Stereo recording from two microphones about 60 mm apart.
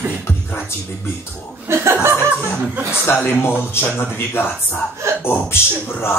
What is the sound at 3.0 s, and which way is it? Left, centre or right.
Speech, left.